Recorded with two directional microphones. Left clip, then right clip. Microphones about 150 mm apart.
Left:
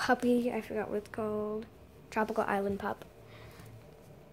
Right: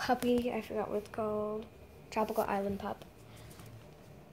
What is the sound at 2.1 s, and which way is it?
Speech, 15° left (ahead or behind).